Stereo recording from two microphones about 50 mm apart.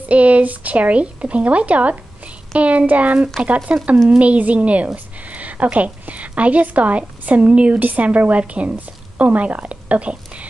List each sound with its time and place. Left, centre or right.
0.1 s a woman's voice: right